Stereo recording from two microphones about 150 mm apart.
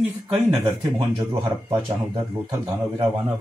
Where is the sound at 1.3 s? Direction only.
35° right (ahead or behind).